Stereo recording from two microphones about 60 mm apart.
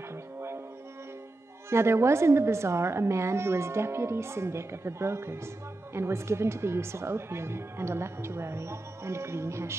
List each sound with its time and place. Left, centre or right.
1.7 s speech: right